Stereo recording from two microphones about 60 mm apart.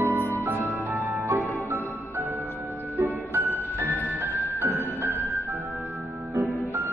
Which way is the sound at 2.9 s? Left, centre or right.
Right.